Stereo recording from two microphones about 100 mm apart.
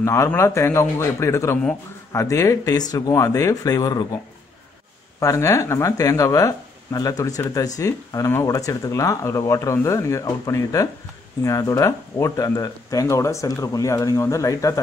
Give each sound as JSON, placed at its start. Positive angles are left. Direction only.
{"t": 0.0, "sound": "a man's voice", "side_deg": 30}
{"t": 5.2, "sound": "speech", "side_deg": 30}